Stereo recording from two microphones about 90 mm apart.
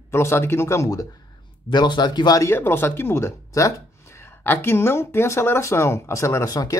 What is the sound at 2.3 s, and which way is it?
Speech, 25° left (ahead or behind).